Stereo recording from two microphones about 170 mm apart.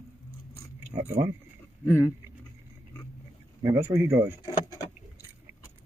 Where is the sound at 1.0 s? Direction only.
15° right (ahead or behind).